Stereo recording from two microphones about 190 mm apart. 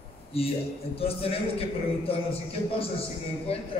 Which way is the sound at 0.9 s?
30° left (ahead or behind).